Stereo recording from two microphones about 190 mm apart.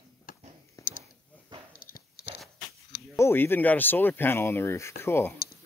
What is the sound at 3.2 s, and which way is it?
Speech, 10° left (ahead or behind).